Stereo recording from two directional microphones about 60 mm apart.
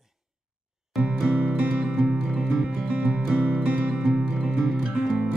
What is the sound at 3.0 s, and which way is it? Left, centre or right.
Music, centre.